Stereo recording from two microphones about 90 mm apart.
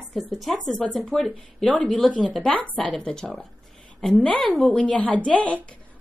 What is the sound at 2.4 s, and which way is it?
A woman's voice, 15° left (ahead or behind).